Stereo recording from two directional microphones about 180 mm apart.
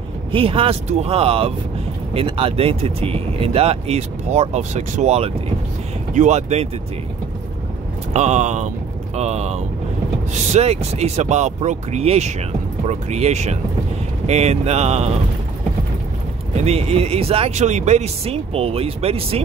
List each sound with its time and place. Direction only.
0.3 s speech: 30° right (ahead or behind)
8.1 s speech: 40° right (ahead or behind)
16.6 s speech: 35° right (ahead or behind)